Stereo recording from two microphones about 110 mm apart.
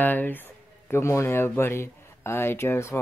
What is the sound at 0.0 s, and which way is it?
Speech, 15° left (ahead or behind).